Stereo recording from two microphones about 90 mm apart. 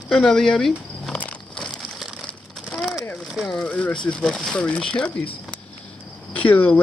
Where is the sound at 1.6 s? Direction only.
5° left (ahead or behind).